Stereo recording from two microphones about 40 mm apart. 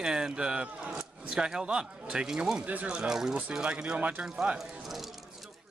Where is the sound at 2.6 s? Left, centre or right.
Right.